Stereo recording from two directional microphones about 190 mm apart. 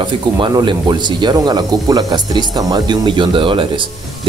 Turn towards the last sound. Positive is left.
turn(degrees=-25)  # may be behind; listen again after turning